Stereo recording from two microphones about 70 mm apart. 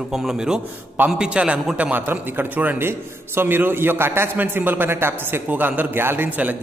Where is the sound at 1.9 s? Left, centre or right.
Right.